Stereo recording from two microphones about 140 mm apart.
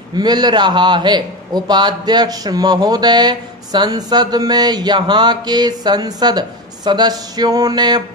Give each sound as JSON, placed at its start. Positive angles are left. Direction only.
{"t": 0.1, "sound": "a man's voice", "side_deg": -30}